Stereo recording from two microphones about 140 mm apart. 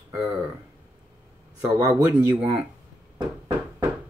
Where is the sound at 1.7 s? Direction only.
20° right (ahead or behind).